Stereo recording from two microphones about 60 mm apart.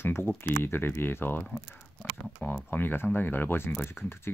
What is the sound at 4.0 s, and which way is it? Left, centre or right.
Speech, centre.